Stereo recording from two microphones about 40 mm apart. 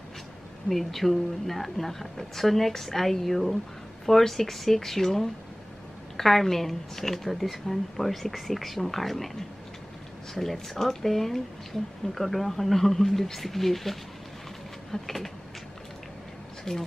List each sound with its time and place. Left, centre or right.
0.7 s speech: centre
10.3 s speech: centre
16.7 s speech: centre